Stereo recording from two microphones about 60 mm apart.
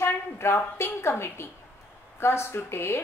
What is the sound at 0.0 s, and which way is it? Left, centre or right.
A woman's voice, left.